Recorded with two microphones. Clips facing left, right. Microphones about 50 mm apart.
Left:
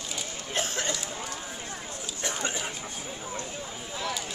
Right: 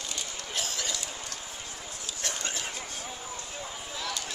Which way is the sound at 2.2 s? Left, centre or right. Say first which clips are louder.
Left 4 dB; centre.